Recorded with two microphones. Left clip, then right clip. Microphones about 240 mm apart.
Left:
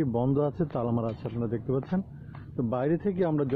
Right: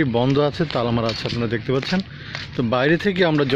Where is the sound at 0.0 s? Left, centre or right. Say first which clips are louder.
Right 9 dB; centre.